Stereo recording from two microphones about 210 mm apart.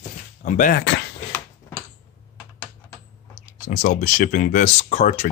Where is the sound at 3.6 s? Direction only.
40° left (ahead or behind).